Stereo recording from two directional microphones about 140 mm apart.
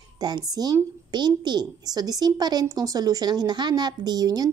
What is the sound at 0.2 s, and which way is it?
A woman's voice, 30° right (ahead or behind).